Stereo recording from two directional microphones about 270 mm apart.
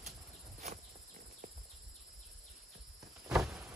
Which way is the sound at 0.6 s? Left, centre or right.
Right.